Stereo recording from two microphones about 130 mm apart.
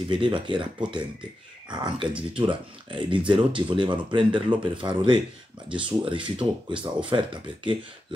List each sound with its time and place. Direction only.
0.1 s speech: 40° right (ahead or behind)